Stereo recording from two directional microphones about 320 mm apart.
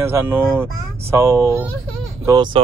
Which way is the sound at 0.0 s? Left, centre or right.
Centre.